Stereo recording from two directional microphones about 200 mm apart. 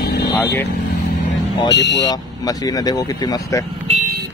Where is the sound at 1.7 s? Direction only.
60° left (ahead or behind).